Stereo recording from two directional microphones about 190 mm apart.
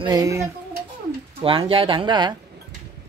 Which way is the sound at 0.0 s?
20° right (ahead or behind).